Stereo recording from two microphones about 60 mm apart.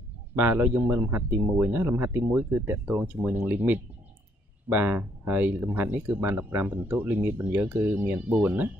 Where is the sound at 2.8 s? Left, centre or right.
Centre.